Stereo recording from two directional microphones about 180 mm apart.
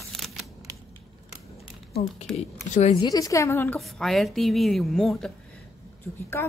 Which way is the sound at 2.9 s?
20° left (ahead or behind).